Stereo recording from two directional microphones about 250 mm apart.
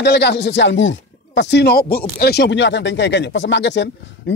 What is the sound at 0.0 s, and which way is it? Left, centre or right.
Speech, left.